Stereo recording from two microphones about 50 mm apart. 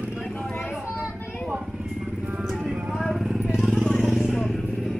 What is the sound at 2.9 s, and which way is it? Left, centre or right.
Vehicle, centre.